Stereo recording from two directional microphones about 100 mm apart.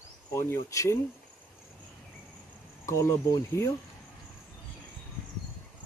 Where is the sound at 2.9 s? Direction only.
30° left (ahead or behind).